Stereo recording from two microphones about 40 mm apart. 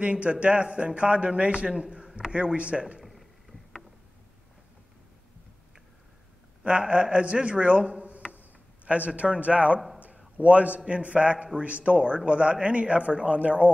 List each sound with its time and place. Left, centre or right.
0.0 s a man's voice: right
6.6 s a man's voice: right
8.0 s a sound: right
8.8 s a man's voice: right
9.9 s a sound: right
10.9 s a man's voice: right